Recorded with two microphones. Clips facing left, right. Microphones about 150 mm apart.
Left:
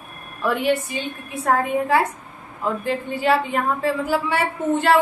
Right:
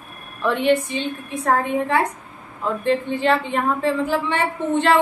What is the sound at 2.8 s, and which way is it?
A woman's voice, 5° left (ahead or behind).